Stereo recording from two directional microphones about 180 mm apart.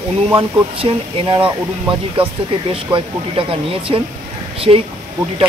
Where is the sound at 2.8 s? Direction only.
30° right (ahead or behind).